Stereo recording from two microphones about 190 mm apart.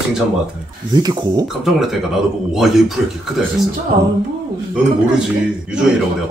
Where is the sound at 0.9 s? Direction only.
20° right (ahead or behind).